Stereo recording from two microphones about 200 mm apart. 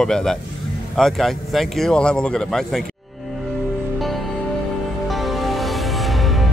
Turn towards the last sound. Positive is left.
turn(degrees=0)  # may be behind; listen again after turning